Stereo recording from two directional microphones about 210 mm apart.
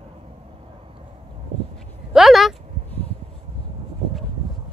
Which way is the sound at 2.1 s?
Centre (ahead or behind).